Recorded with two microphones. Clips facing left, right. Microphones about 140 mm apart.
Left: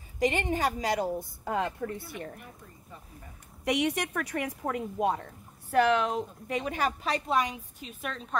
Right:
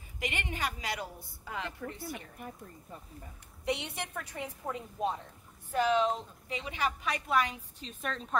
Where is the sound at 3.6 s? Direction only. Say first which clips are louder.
Left 7 dB; 85° left; by 6.9 s 45° left (ahead or behind).